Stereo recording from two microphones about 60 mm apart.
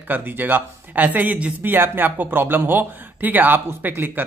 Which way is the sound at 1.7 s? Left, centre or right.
Right.